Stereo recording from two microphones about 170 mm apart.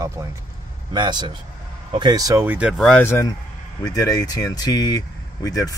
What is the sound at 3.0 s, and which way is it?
Speech, 15° left (ahead or behind).